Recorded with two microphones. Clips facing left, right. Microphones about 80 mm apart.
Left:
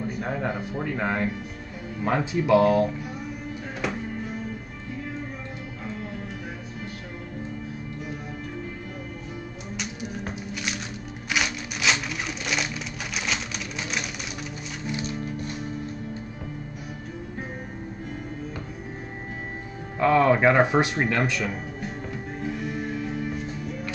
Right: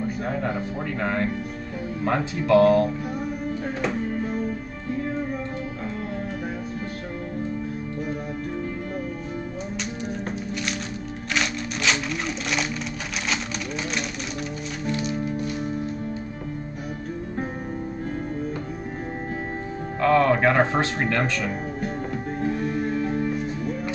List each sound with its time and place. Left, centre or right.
0.9 s speech: centre
11.3 s a sound: centre
20.0 s speech: centre
22.4 s music: right